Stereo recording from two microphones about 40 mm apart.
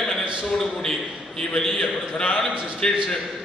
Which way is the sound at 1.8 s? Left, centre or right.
Left.